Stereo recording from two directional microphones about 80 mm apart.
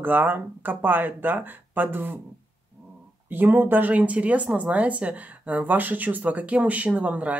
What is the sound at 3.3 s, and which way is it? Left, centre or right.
Speech, right.